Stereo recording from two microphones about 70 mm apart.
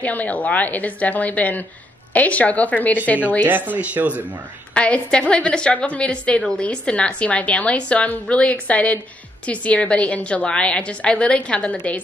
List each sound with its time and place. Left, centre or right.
0.0 s a woman's voice: left
3.4 s speech: right
4.7 s a woman's voice: centre